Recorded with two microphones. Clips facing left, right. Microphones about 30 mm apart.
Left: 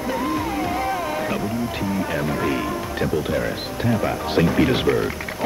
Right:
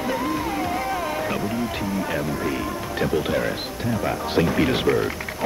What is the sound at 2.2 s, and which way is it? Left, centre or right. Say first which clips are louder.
Music: left 3 dB; left.